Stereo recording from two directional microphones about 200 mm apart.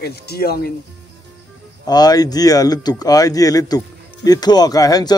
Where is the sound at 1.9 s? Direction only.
20° left (ahead or behind).